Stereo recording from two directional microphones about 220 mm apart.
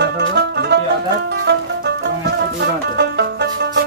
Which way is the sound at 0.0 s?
50° right (ahead or behind).